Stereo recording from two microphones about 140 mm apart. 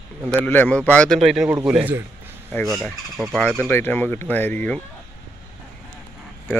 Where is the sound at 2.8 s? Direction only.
5° left (ahead or behind).